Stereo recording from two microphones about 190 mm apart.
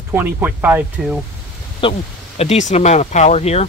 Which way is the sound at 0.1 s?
10° right (ahead or behind).